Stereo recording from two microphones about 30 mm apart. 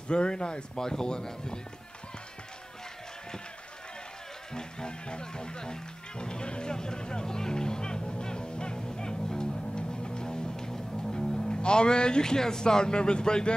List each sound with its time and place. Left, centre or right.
0.1 s speech: left
4.6 s music: left